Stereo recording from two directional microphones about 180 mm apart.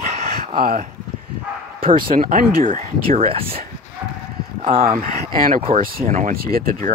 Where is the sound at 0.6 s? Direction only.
55° right (ahead or behind).